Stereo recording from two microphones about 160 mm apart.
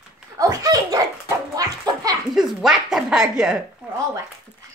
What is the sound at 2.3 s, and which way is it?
Speech, 5° right (ahead or behind).